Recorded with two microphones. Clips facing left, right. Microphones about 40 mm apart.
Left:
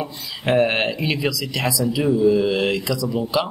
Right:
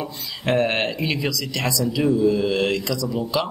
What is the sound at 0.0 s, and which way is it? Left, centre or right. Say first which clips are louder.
Speech: left 1 dB; centre.